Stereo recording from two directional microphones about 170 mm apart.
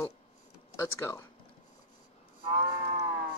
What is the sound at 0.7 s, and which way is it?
Speech, 20° left (ahead or behind).